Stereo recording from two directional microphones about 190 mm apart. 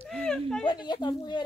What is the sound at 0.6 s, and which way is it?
Speech, 25° left (ahead or behind).